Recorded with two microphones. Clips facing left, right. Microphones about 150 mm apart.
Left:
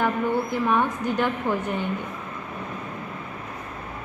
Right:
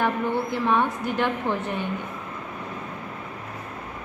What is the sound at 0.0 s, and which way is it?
Speech, 10° left (ahead or behind).